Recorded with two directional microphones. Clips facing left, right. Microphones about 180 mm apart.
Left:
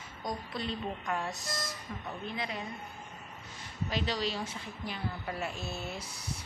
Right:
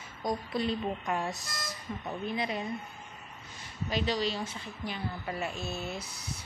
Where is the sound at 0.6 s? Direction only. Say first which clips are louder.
Right 5 dB; 15° right (ahead or behind).